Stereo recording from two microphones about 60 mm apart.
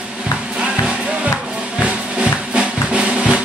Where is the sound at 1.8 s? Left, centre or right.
Centre.